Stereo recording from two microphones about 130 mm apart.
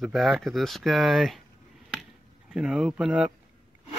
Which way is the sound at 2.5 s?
5° right (ahead or behind).